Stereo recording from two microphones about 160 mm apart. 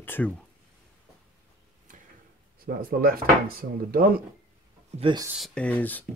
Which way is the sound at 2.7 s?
65° right (ahead or behind).